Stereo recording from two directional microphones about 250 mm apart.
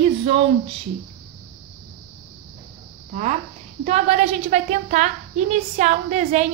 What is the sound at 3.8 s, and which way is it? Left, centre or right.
A woman's voice, right.